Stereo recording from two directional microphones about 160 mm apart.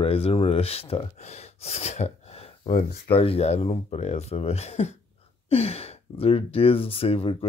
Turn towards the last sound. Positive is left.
turn(degrees=35)  # may be behind; listen again after turning